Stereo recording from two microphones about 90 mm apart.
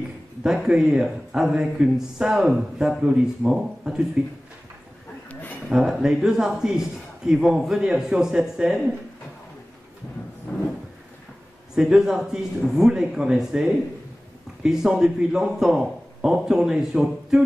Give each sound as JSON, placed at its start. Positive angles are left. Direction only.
{"t": 0.4, "sound": "speech", "side_deg": -5}
{"t": 5.3, "sound": "a sound", "side_deg": 20}
{"t": 5.7, "sound": "a man's voice", "side_deg": -5}
{"t": 11.7, "sound": "speech", "side_deg": -5}